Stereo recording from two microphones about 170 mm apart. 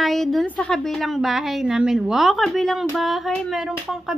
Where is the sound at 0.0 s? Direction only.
Centre (ahead or behind).